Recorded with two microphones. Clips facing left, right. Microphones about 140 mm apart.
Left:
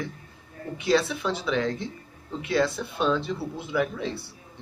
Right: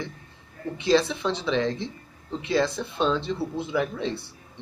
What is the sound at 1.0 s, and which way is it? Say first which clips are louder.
Speech: right 1 dB; 30° right (ahead or behind).